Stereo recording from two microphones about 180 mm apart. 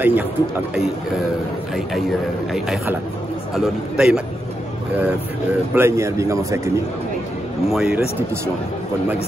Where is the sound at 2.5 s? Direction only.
Centre (ahead or behind).